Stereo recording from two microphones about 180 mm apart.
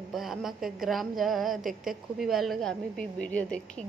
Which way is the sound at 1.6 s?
50° right (ahead or behind).